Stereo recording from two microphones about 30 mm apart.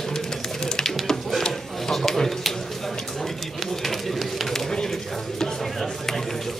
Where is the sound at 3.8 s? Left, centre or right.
Centre.